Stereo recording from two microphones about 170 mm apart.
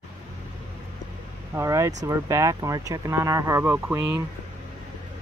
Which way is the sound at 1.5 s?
15° right (ahead or behind).